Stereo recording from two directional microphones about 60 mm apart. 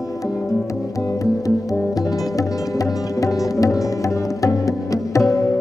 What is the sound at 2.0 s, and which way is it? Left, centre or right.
Music, left.